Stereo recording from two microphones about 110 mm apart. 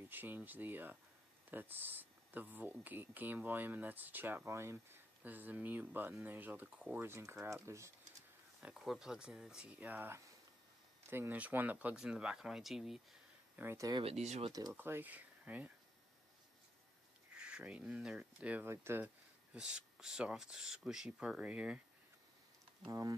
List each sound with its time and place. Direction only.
0.1 s speech: 15° right (ahead or behind)
8.6 s speech: centre (ahead or behind)
13.6 s speech: 25° right (ahead or behind)
14.0 s speech: 80° right
14.5 s speech: 35° right (ahead or behind)
14.8 s speech: 20° right (ahead or behind)
17.4 s speech: 10° right (ahead or behind)
18.5 s speech: 20° right (ahead or behind)
19.5 s speech: 10° right (ahead or behind)
22.8 s speech: 30° right (ahead or behind)